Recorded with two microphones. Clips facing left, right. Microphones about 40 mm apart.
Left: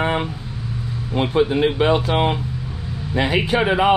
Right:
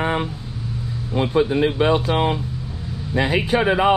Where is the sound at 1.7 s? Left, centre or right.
Left.